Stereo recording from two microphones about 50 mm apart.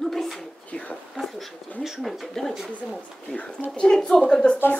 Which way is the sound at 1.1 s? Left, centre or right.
Centre.